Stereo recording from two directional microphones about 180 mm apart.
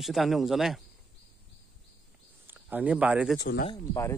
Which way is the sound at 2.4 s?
10° right (ahead or behind).